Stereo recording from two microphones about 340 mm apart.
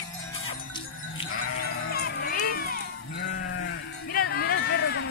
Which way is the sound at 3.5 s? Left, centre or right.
Left.